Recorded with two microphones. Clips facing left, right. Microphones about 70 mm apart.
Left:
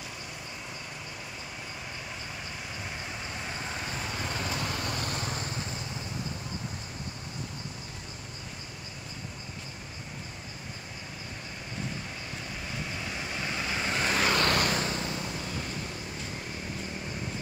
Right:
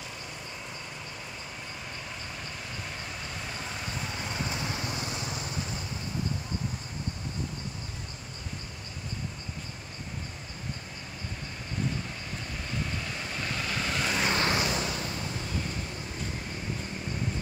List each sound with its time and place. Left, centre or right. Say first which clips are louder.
4.5 s vehicle: left 1 dB; left
13.0 s vehicle: even; centre
13.9 s vehicle: left 2 dB; left
14.3 s vehicle: left 1 dB; left